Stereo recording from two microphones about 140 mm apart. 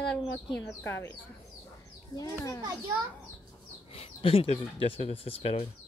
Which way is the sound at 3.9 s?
45° left (ahead or behind).